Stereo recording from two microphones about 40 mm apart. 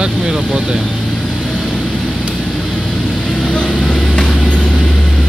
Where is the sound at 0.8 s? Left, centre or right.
Left.